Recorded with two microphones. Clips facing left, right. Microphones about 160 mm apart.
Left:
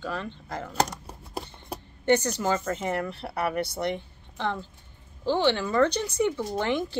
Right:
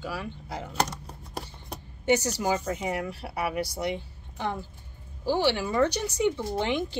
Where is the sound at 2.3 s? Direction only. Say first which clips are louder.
Left 1 dB; 10° right (ahead or behind).